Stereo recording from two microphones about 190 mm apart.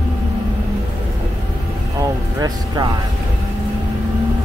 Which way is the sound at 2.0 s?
20° right (ahead or behind).